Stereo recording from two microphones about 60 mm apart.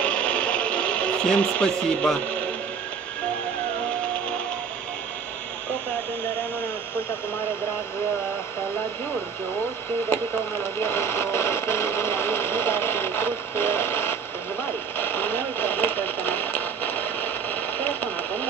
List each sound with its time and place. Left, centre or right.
0.0 s a sound: left
10.1 s speech: left
15.0 s radio: left